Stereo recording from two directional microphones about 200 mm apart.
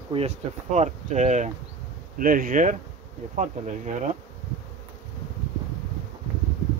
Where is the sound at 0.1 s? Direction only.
30° right (ahead or behind).